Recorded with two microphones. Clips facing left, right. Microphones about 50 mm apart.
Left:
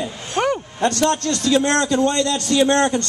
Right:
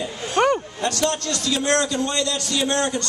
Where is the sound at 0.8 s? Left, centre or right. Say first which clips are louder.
Left 5 dB; left.